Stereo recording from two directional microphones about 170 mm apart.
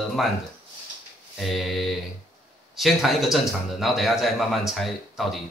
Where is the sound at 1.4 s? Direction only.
Centre (ahead or behind).